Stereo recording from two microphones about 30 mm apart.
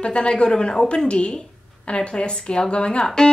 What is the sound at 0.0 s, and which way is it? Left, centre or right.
A woman's voice, left.